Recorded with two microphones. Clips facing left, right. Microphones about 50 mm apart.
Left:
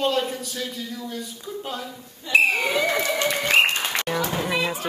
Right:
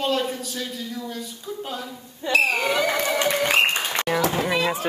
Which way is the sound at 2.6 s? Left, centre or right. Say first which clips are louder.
Even; centre.